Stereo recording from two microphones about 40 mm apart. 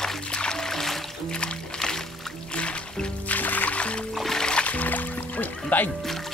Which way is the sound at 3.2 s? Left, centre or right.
Left.